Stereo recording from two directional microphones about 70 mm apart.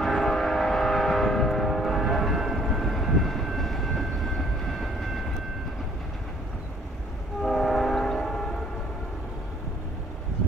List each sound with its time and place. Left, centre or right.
0.0 s vehicle: centre
7.4 s train: centre